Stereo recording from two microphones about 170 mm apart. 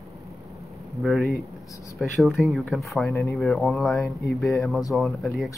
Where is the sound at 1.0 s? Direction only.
Centre (ahead or behind).